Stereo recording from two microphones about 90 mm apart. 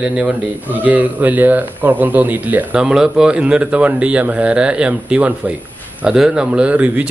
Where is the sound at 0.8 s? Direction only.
20° right (ahead or behind).